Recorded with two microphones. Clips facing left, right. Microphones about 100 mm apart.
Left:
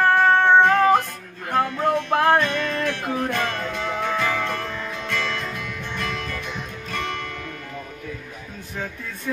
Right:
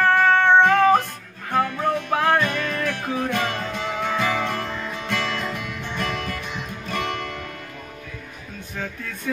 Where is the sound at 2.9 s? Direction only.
10° right (ahead or behind).